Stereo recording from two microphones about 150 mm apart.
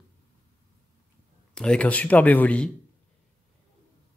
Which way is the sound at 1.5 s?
5° left (ahead or behind).